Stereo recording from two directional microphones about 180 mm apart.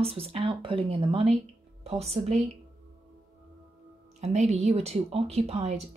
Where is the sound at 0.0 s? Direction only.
35° right (ahead or behind).